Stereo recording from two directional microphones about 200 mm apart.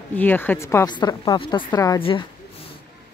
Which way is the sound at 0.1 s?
10° left (ahead or behind).